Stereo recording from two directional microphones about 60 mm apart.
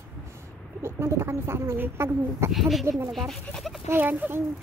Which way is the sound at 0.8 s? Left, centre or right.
Right.